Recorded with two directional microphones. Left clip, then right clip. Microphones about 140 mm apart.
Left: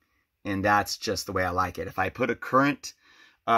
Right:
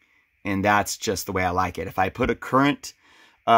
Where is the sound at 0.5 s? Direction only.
30° right (ahead or behind).